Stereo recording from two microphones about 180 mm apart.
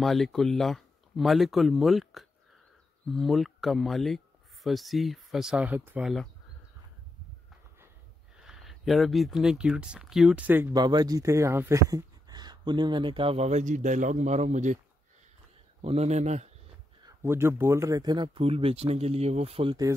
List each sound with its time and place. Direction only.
0.0 s speech: centre (ahead or behind)
8.4 s speech: centre (ahead or behind)
10.7 s speech: 20° right (ahead or behind); by 14.8 s 40° right (ahead or behind)
15.8 s a man's voice: 35° right (ahead or behind)
17.0 s speech: 15° right (ahead or behind); by 19.9 s 30° right (ahead or behind)